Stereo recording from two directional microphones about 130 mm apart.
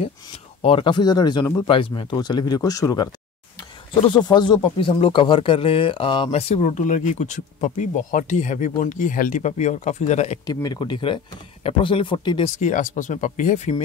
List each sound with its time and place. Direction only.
0.6 s speech: 45° left (ahead or behind); by 3.1 s 25° left (ahead or behind)
4.1 s speech: 35° left (ahead or behind)
6.3 s speech: 55° left (ahead or behind)
10.4 s speech: 30° left (ahead or behind)
12.5 s speech: 75° left (ahead or behind)